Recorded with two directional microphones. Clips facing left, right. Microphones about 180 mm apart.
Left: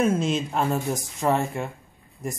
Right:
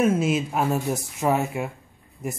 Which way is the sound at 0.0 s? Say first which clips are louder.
Right 2 dB; 5° right (ahead or behind).